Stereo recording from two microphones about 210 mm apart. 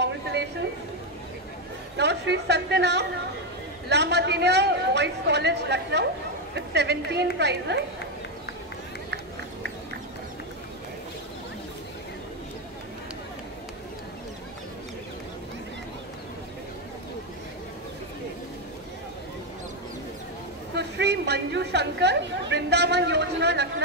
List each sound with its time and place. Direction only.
0.0 s a sound: 55° right (ahead or behind)
2.0 s a woman's voice: 55° right (ahead or behind)
20.7 s chatter: 55° right (ahead or behind)